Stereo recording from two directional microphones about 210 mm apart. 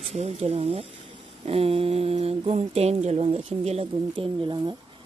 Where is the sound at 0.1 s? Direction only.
30° right (ahead or behind).